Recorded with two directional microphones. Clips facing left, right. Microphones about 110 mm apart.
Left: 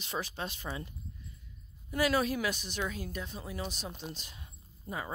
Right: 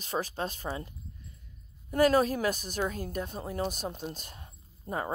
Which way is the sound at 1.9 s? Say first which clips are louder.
Right 5 dB; 45° right (ahead or behind).